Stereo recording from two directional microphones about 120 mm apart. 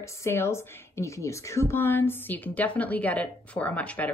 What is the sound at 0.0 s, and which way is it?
Speech, 20° left (ahead or behind).